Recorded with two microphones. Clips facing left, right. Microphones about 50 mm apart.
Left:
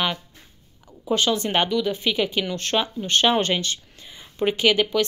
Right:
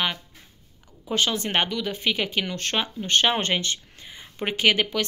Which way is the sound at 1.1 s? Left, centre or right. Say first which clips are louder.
Left 3 dB; right.